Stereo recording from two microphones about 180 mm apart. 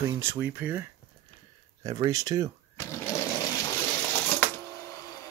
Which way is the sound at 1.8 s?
20° right (ahead or behind).